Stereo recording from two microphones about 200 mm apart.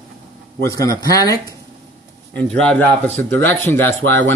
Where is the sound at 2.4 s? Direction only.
5° left (ahead or behind).